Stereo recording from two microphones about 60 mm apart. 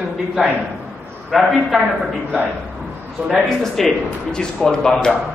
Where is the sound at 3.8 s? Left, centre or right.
Centre.